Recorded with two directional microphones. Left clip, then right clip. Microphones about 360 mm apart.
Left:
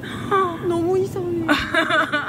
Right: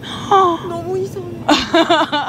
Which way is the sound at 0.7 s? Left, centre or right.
Left.